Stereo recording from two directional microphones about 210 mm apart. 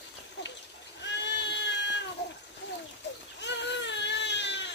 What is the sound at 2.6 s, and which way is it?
Bird, 60° left (ahead or behind).